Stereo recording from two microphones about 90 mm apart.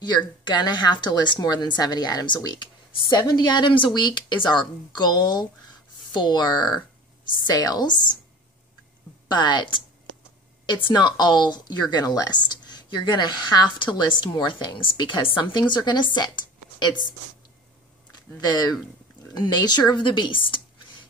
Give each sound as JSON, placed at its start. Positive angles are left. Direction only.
{"t": 0.0, "sound": "a woman's voice", "side_deg": 55}
{"t": 9.3, "sound": "a woman's voice", "side_deg": 55}
{"t": 19.3, "sound": "a woman's voice", "side_deg": 55}